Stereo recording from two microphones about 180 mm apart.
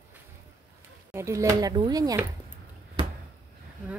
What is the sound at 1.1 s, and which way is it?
Speech, 15° right (ahead or behind).